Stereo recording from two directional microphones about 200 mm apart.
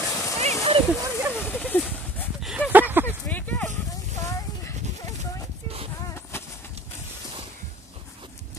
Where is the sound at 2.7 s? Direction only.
10° right (ahead or behind).